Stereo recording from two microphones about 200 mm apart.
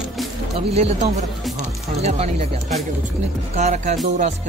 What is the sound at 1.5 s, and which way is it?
Music, 35° right (ahead or behind).